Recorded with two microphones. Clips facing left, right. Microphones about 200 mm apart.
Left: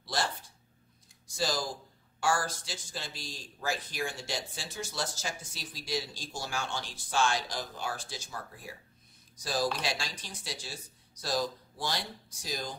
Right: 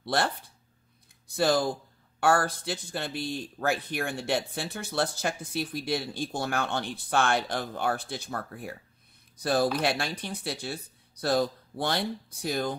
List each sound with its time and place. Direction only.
0.0 s speech: 60° right (ahead or behind)